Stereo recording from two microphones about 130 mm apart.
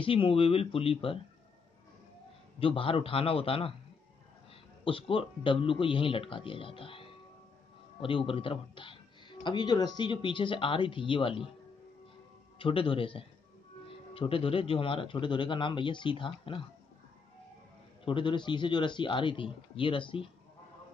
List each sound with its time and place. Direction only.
0.0 s a man's voice: 45° left (ahead or behind)
2.6 s a man's voice: 45° left (ahead or behind)
4.8 s a man's voice: 45° left (ahead or behind)
12.5 s a man's voice: 40° left (ahead or behind)
18.0 s speech: 35° left (ahead or behind)